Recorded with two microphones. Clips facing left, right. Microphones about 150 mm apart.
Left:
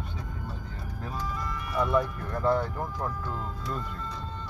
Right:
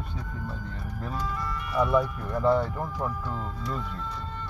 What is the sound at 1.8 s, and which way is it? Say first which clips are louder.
Speech: right 1 dB; 5° right (ahead or behind).